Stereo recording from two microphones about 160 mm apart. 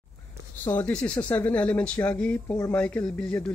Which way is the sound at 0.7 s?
10° left (ahead or behind).